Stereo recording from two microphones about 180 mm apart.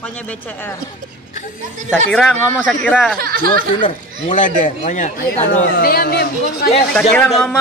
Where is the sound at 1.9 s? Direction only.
5° left (ahead or behind).